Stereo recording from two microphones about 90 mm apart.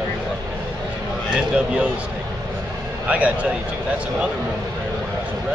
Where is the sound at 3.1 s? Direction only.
15° right (ahead or behind).